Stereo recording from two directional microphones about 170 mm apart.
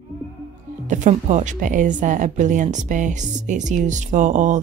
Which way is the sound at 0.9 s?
45° right (ahead or behind).